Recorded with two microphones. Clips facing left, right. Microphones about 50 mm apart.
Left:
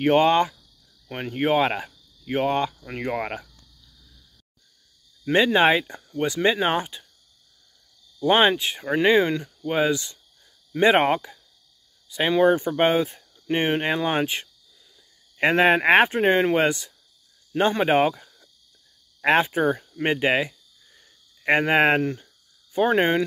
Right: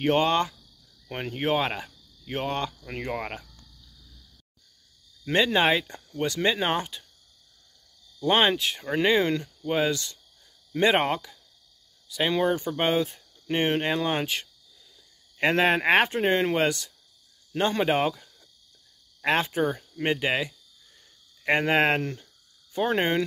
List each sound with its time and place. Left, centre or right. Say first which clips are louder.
0.0 s speech: left 5 dB; centre
1.0 s speech: left 4 dB; centre
5.2 s speech: left 4 dB; centre
8.2 s speech: left 4 dB; centre